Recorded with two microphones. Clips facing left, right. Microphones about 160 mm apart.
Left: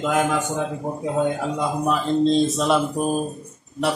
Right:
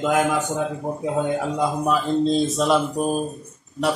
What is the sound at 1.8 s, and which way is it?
A man's voice, 5° right (ahead or behind).